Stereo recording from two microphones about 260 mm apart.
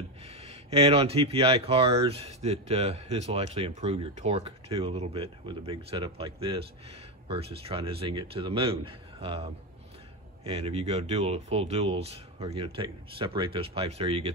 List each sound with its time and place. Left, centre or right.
0.2 s speech: right